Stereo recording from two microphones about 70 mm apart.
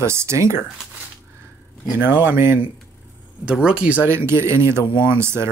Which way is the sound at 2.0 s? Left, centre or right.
Right.